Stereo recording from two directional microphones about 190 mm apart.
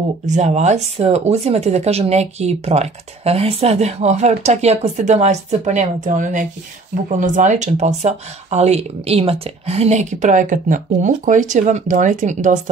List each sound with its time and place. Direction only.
0.2 s speech: 35° right (ahead or behind)